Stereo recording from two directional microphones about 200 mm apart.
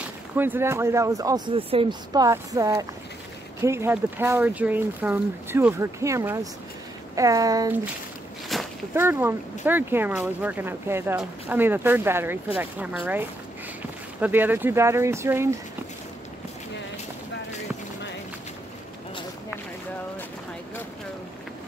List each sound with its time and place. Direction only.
0.4 s speech: 10° right (ahead or behind)
8.5 s walk: centre (ahead or behind)
8.9 s speech: 10° right (ahead or behind)
14.2 s speech: 10° right (ahead or behind)